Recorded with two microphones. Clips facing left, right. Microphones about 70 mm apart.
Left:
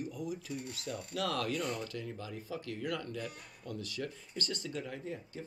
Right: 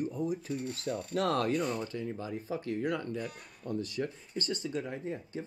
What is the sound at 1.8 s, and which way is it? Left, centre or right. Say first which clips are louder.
Speech: right 5 dB; right.